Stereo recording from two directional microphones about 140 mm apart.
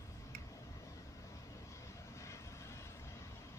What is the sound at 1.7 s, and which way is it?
Vehicle, 20° left (ahead or behind).